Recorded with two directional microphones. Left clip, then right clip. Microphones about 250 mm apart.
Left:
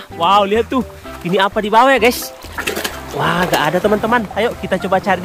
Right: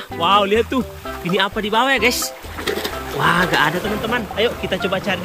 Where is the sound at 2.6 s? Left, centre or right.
Centre.